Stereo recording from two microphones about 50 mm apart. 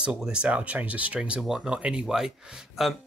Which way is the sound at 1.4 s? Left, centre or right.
Centre.